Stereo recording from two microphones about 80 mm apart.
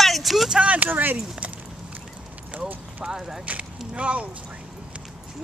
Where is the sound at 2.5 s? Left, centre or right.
Centre.